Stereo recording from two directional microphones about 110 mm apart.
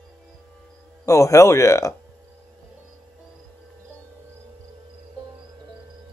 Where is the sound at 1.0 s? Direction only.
30° left (ahead or behind).